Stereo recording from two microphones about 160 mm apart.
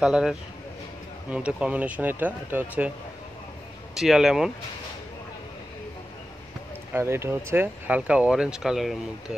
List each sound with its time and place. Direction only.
0.0 s speech: 5° right (ahead or behind)
3.9 s speech: centre (ahead or behind)
6.9 s speech: 15° right (ahead or behind)